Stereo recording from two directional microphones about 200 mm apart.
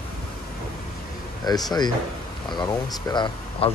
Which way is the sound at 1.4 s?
20° left (ahead or behind).